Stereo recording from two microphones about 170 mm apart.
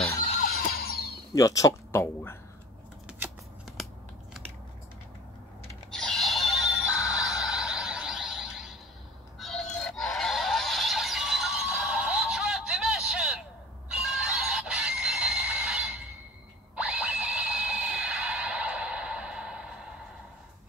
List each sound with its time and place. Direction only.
0.4 s neigh: 60° left (ahead or behind)
1.3 s speech: 20° left (ahead or behind)
3.1 s scissors: 5° right (ahead or behind)
5.9 s music: centre (ahead or behind)
9.4 s synthetic singing: centre (ahead or behind)
13.8 s a sound: 5° right (ahead or behind)